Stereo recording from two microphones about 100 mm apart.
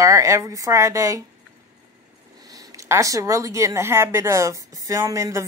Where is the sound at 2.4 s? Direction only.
40° right (ahead or behind).